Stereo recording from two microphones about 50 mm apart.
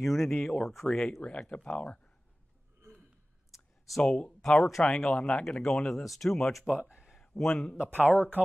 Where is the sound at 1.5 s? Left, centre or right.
Left.